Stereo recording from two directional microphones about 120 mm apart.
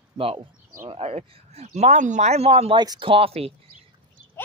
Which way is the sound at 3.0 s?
50° right (ahead or behind).